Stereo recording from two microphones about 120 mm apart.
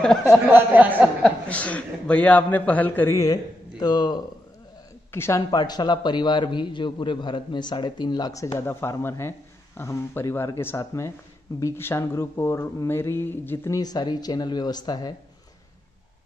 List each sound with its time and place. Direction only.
0.0 s speech: 5° left (ahead or behind)
0.5 s speech: 15° right (ahead or behind)
1.5 s a man's voice: 10° left (ahead or behind)
3.2 s speech: 30° left (ahead or behind)
5.1 s a man's voice: 20° left (ahead or behind)
5.5 s a man's voice: 35° left (ahead or behind); by 13.7 s 20° left (ahead or behind)
13.7 s a man's voice: 35° left (ahead or behind)